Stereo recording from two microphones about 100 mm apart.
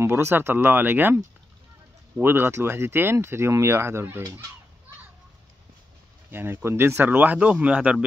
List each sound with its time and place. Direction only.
0.0 s speech: 25° right (ahead or behind)
6.3 s speech: 20° right (ahead or behind)